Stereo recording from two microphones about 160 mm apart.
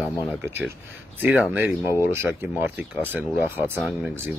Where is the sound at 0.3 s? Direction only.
10° right (ahead or behind).